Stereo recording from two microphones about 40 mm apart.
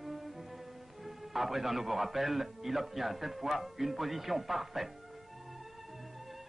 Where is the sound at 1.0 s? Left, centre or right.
Centre.